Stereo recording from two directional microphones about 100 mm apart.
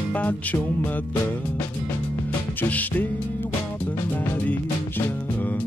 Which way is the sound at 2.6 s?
15° left (ahead or behind).